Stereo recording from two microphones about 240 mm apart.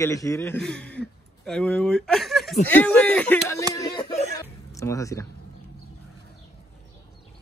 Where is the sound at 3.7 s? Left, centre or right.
Centre.